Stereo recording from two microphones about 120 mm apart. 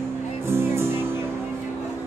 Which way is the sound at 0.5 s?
20° right (ahead or behind).